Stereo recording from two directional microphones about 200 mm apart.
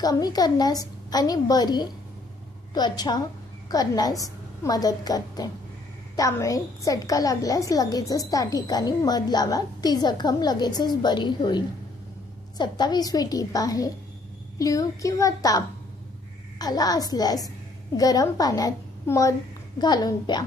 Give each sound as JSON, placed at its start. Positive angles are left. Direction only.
{"t": 0.0, "sound": "a woman's voice", "side_deg": 20}